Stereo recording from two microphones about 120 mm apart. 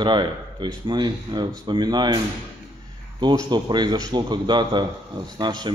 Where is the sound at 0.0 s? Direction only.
40° right (ahead or behind).